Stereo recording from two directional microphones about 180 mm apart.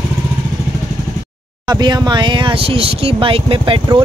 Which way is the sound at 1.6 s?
25° right (ahead or behind).